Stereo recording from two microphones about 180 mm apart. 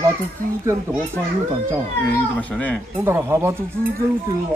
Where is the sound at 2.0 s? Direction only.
10° left (ahead or behind).